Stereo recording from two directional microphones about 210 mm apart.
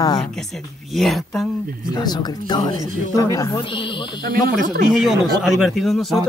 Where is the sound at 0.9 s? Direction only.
Centre (ahead or behind).